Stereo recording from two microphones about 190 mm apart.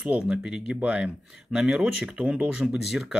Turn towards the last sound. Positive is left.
turn(degrees=0)  # may be behind; listen again after turning